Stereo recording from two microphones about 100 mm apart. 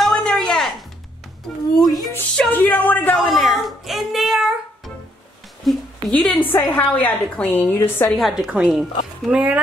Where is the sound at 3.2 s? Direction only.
Centre (ahead or behind).